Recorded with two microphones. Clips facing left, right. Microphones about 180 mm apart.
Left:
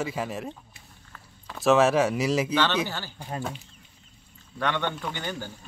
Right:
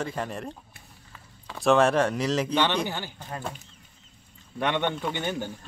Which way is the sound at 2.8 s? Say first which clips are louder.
Right 2 dB; 20° right (ahead or behind).